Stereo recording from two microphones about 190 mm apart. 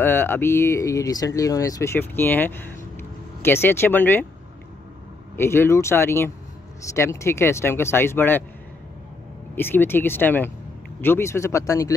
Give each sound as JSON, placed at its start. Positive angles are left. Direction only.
{"t": 0.0, "sound": "speech", "side_deg": 10}
{"t": 5.3, "sound": "speech", "side_deg": 10}
{"t": 9.6, "sound": "speech", "side_deg": 10}